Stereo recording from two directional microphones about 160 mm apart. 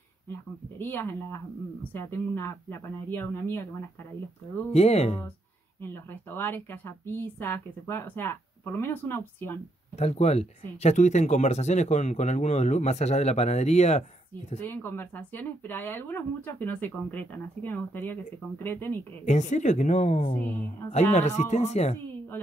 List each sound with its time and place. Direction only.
0.3 s speech: 15° left (ahead or behind)
4.7 s speech: 40° left (ahead or behind)
5.8 s speech: 15° left (ahead or behind)
9.9 s speech: 40° left (ahead or behind)
14.6 s speech: 15° left (ahead or behind)
19.2 s speech: 50° left (ahead or behind)
20.3 s speech: 10° left (ahead or behind)
20.9 s speech: 45° left (ahead or behind)